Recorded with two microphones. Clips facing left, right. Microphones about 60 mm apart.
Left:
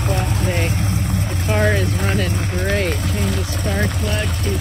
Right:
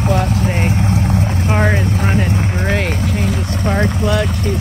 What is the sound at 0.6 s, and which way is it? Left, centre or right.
Vehicle, right.